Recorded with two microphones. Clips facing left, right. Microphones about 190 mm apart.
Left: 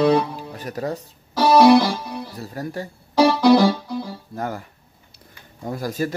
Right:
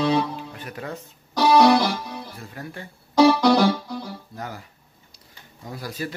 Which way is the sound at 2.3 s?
40° left (ahead or behind).